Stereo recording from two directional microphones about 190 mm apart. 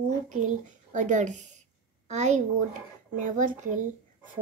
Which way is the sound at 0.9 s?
40° right (ahead or behind).